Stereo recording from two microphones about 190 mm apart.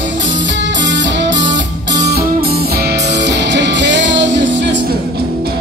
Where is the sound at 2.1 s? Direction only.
55° right (ahead or behind); by 4.8 s 70° right (ahead or behind).